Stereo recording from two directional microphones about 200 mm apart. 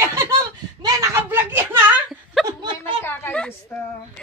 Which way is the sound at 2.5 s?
20° right (ahead or behind).